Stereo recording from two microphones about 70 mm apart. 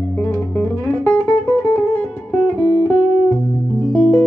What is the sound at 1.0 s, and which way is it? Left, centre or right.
Guitar, left.